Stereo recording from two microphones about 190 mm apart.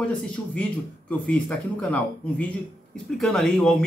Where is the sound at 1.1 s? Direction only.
5° left (ahead or behind).